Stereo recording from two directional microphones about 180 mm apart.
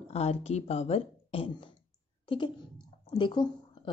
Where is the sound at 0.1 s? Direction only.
35° left (ahead or behind).